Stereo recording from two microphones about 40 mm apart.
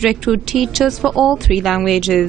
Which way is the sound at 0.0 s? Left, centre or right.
Centre.